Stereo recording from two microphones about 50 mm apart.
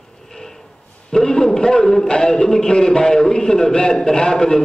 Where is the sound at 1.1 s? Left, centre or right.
Centre.